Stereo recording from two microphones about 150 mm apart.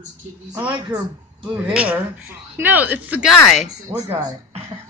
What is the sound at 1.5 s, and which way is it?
Speech, 10° right (ahead or behind).